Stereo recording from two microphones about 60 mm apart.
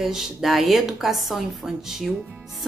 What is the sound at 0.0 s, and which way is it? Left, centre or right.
Speech, centre.